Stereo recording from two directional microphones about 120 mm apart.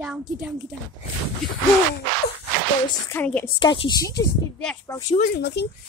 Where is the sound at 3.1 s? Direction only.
15° left (ahead or behind).